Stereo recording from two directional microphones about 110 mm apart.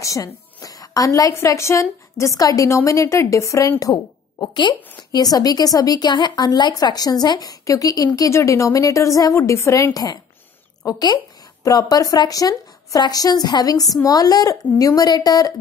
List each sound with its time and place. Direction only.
0.0 s a woman's voice: 30° left (ahead or behind)
3.8 s a woman's voice: 40° left (ahead or behind)